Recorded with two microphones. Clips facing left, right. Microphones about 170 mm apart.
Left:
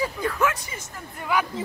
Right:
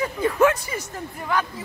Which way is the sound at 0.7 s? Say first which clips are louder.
Right 8 dB; 65° right (ahead or behind).